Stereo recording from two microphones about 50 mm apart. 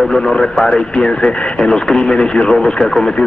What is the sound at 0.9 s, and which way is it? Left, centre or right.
A man's voice, centre.